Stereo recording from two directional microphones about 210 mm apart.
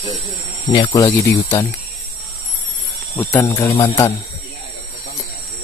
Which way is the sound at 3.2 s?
10° left (ahead or behind).